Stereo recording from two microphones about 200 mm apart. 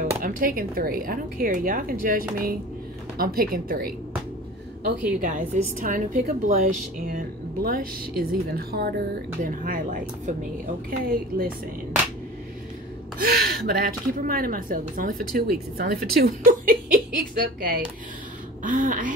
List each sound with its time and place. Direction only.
0.2 s a woman's voice: 45° right (ahead or behind)
5.2 s a woman's voice: 40° right (ahead or behind)
13.2 s a woman's voice: 45° right (ahead or behind)